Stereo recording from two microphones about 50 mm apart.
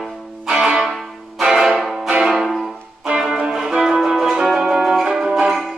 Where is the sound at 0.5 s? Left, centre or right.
Centre.